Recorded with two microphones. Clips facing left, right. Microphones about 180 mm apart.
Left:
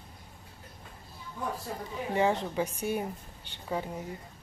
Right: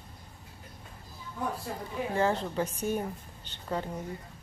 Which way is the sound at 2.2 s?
15° left (ahead or behind).